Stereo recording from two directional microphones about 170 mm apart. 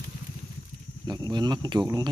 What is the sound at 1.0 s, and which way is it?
Speech, 25° right (ahead or behind).